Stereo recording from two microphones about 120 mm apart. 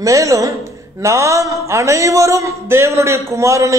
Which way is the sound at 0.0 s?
25° right (ahead or behind).